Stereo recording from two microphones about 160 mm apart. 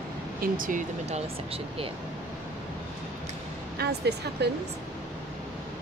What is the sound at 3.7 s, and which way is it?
Speech, 90° right.